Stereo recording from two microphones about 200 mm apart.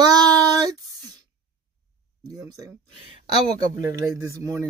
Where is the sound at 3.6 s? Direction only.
20° right (ahead or behind).